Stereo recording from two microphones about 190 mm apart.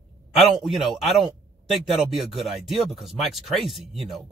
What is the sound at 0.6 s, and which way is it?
Speech, centre (ahead or behind).